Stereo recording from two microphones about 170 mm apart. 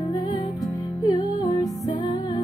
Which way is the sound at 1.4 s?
20° left (ahead or behind).